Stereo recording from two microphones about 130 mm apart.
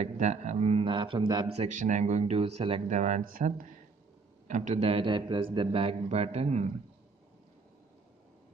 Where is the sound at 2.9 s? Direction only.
70° right (ahead or behind).